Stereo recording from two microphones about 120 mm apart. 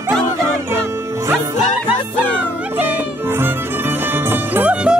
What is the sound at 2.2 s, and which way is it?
Music, 10° right (ahead or behind).